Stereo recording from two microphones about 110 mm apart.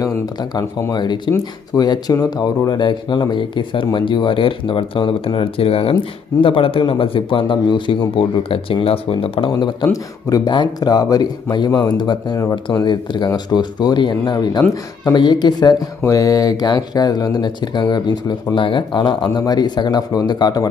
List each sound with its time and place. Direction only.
0.0 s speech: 40° left (ahead or behind)